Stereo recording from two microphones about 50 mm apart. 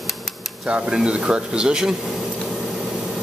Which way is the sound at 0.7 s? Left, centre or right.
Centre.